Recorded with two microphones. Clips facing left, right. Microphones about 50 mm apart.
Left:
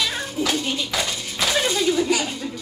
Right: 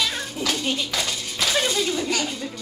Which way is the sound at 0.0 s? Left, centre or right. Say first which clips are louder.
Left 2 dB; centre.